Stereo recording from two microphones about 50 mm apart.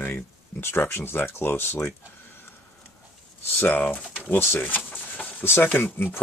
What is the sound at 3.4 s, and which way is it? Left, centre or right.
Speech, left.